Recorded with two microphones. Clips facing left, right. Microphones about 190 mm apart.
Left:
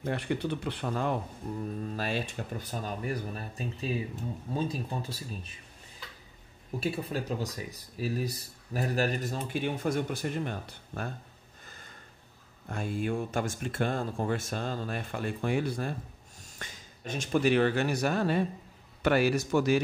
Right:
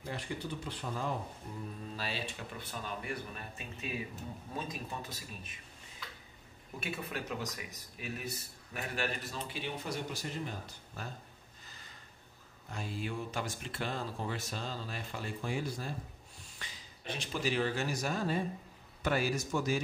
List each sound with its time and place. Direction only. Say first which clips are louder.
0.0 s speech: left 9 dB; 65° left (ahead or behind)
1.5 s speech: left 12 dB; 55° left (ahead or behind); by 5.6 s 30° left (ahead or behind)
6.8 s speech: left 7 dB; 35° left (ahead or behind); by 11.1 s 60° left (ahead or behind)
11.6 s a sound: left 5 dB; 50° left (ahead or behind)
12.6 s speech: left 8 dB; 55° left (ahead or behind)
16.3 s a man's voice: left 6 dB; 45° left (ahead or behind); by 19.8 s 70° left (ahead or behind)